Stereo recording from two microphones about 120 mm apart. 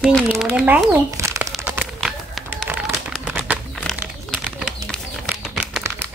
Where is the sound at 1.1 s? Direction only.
25° right (ahead or behind).